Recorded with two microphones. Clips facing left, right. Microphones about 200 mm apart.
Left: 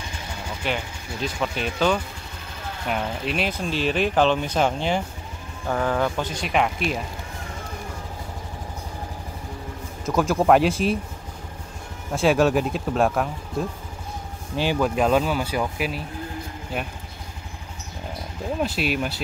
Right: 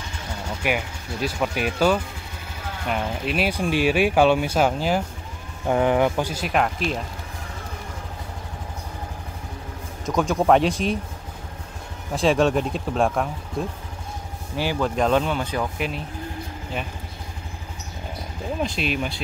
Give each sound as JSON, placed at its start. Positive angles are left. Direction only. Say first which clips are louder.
{"t": 0.7, "sound": "speech", "louder": "right 3 dB", "side_deg": -10}
{"t": 5.7, "sound": "speech", "louder": "right 4 dB", "side_deg": -20}
{"t": 10.0, "sound": "speech", "louder": "even", "side_deg": 0}
{"t": 12.1, "sound": "speech", "louder": "even", "side_deg": 5}
{"t": 14.6, "sound": "speech", "louder": "left 2 dB", "side_deg": 20}
{"t": 15.0, "sound": "speech", "louder": "right 1 dB", "side_deg": 5}
{"t": 18.6, "sound": "speech", "louder": "left 1 dB", "side_deg": 5}